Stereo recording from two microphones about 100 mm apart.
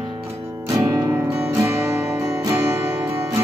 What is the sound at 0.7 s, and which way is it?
Music, 35° right (ahead or behind).